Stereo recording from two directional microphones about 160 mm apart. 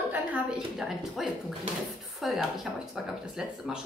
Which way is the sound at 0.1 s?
10° right (ahead or behind).